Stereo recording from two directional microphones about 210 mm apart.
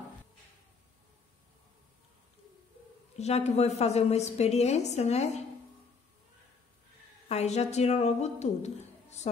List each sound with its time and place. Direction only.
3.2 s a woman's voice: 30° left (ahead or behind)
7.2 s a woman's voice: 30° left (ahead or behind)